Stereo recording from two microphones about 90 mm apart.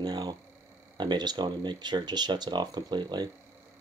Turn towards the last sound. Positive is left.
turn(degrees=-55)  # may be behind; listen again after turning